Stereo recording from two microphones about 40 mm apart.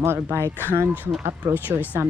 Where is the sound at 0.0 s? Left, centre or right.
Right.